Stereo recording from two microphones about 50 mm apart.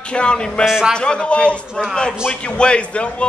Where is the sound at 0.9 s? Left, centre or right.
Centre.